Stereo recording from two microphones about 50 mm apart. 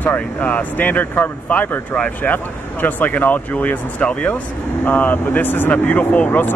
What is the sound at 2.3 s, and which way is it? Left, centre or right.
Speech, left.